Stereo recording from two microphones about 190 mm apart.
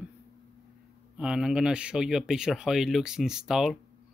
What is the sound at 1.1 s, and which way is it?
Speech, 5° right (ahead or behind).